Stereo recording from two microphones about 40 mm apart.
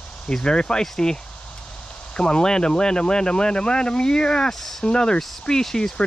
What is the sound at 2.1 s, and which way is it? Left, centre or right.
Speech, left.